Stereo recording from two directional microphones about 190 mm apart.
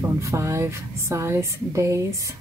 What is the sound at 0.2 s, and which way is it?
Speech, 15° right (ahead or behind).